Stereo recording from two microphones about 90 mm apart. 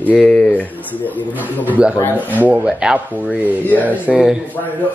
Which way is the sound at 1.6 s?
15° right (ahead or behind).